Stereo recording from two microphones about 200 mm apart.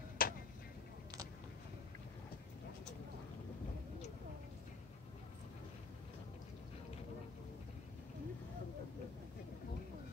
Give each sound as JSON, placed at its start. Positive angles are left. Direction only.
{"t": 0.2, "sound": "vehicle", "side_deg": 45}